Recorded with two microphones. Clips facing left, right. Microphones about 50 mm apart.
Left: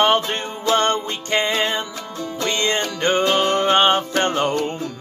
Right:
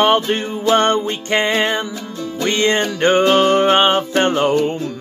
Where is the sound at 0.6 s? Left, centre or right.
Right.